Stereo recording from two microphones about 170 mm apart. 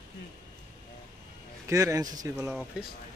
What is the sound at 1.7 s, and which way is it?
Speech, 20° right (ahead or behind).